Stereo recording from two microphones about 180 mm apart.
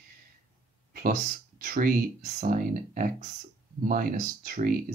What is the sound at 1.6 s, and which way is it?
Speech, 50° right (ahead or behind).